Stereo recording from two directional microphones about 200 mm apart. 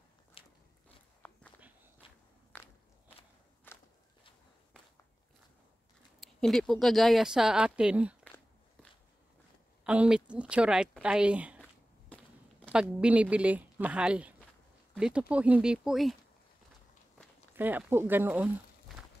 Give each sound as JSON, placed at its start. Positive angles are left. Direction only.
{"t": 0.4, "sound": "biting", "side_deg": 25}
{"t": 2.5, "sound": "walk", "side_deg": 10}
{"t": 6.2, "sound": "speech", "side_deg": 0}
{"t": 9.8, "sound": "speech", "side_deg": -5}
{"t": 12.6, "sound": "a sound", "side_deg": 5}
{"t": 13.0, "sound": "speech", "side_deg": -5}
{"t": 17.6, "sound": "speech", "side_deg": -10}
{"t": 18.9, "sound": "a sound", "side_deg": 0}